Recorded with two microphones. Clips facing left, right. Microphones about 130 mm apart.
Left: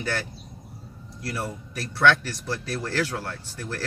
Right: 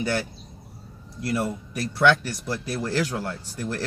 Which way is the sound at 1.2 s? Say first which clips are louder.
Right 6 dB; 15° right (ahead or behind).